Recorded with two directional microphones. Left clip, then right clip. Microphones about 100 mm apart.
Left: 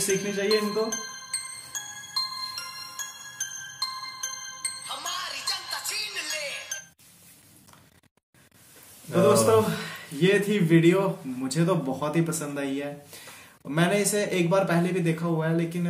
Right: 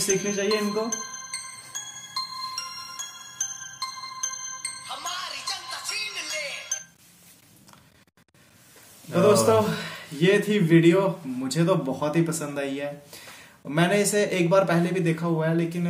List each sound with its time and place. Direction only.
0.1 s speech: 15° right (ahead or behind)
0.5 s music: 45° left (ahead or behind)
9.5 s speech: 15° right (ahead or behind)